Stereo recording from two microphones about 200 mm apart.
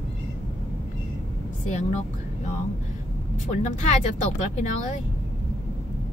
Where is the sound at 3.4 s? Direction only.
35° left (ahead or behind).